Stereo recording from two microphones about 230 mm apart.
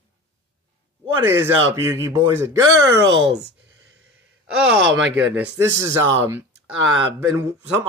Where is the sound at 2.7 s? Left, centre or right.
Right.